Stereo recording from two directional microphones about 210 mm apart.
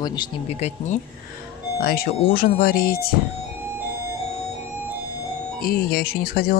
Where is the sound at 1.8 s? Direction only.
45° left (ahead or behind).